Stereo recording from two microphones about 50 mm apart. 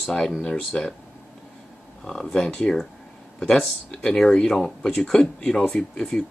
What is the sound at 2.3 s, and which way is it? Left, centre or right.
Speech, centre.